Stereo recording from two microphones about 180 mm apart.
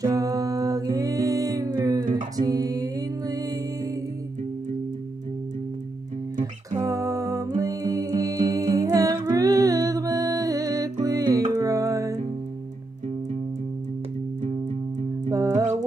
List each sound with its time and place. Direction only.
0.0 s music: 20° right (ahead or behind)
2.0 s music: 45° right (ahead or behind)
2.4 s music: 20° right (ahead or behind)
6.8 s music: 20° right (ahead or behind)
15.2 s music: 20° right (ahead or behind)